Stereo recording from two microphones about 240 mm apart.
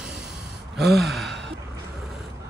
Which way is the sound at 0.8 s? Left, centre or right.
Centre.